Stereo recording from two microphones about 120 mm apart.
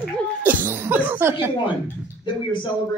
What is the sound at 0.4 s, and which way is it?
Cough, 15° right (ahead or behind).